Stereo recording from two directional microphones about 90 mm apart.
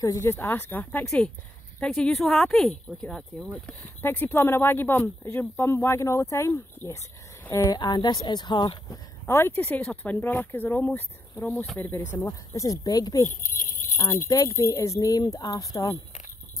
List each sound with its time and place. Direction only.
0.2 s speech: 25° left (ahead or behind)
1.0 s speech: 5° left (ahead or behind)
4.0 s speech: 25° left (ahead or behind)
7.7 s speech: 55° left (ahead or behind)
9.2 s speech: 25° left (ahead or behind)
11.5 s speech: centre (ahead or behind)
11.8 s speech: 25° left (ahead or behind); by 13.3 s 40° left (ahead or behind)
14.0 s speech: 55° left (ahead or behind)
14.7 s speech: 35° left (ahead or behind)